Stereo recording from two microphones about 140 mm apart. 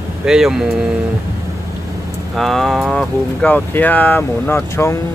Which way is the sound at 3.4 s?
10° left (ahead or behind).